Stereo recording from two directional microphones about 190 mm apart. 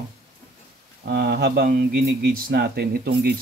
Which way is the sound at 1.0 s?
60° right (ahead or behind).